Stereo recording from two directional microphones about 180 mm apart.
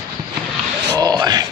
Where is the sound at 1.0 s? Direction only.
20° right (ahead or behind).